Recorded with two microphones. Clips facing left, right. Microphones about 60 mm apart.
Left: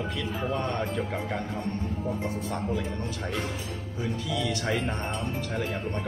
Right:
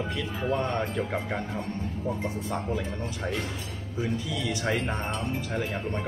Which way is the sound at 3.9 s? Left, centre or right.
Right.